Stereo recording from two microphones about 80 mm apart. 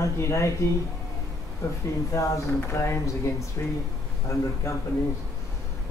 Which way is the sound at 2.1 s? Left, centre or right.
Left.